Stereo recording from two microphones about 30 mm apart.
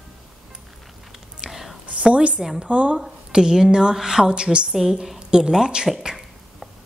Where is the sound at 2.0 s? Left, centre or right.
Right.